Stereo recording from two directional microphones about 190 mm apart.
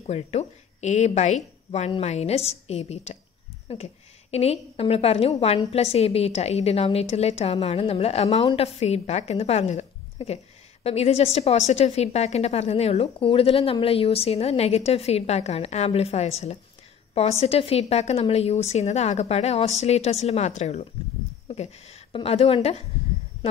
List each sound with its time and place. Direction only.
0.0 s a woman's voice: 35° left (ahead or behind)